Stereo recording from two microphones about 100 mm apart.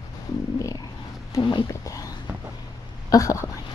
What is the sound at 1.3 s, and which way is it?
Speech, 35° left (ahead or behind).